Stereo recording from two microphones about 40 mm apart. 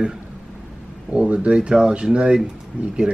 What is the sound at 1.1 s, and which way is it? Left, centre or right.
Speech, right.